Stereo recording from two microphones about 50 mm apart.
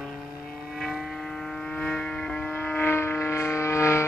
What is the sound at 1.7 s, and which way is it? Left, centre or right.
Music, left.